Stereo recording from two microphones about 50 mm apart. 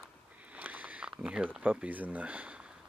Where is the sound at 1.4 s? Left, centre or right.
Right.